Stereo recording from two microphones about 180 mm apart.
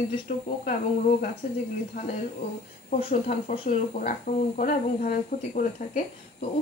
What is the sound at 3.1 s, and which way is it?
Speech, 45° left (ahead or behind).